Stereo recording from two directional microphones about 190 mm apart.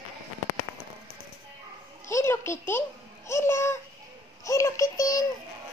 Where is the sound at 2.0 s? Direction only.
15° left (ahead or behind).